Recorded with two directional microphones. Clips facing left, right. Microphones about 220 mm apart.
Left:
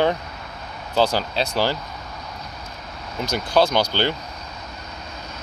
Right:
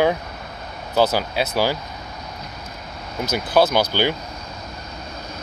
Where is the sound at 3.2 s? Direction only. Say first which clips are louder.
Right 1 dB; 5° right (ahead or behind).